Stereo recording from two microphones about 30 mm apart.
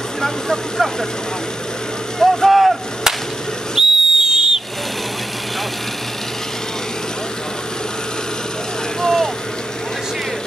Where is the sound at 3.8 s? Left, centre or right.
Centre.